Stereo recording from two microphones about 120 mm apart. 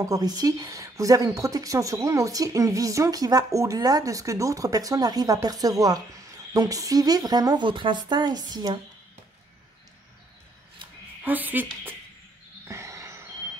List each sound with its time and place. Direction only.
0.0 s a woman's voice: 30° right (ahead or behind)
11.2 s speech: 15° right (ahead or behind)
12.6 s a sound: 25° right (ahead or behind)